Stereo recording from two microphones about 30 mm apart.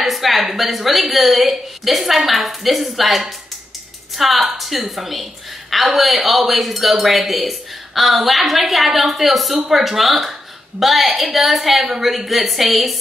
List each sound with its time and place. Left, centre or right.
0.0 s speech: centre